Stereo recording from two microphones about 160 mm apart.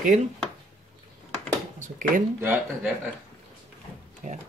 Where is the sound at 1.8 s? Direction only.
55° right (ahead or behind).